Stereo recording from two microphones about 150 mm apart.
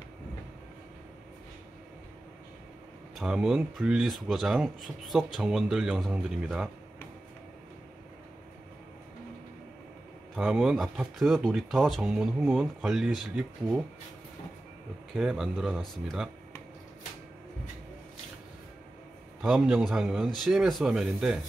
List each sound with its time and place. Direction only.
3.2 s speech: 5° right (ahead or behind)
10.3 s speech: 5° right (ahead or behind)
15.1 s speech: centre (ahead or behind)
19.4 s speech: 5° right (ahead or behind)